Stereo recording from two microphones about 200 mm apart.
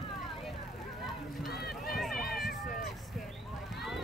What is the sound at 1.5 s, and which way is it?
Run, 50° left (ahead or behind).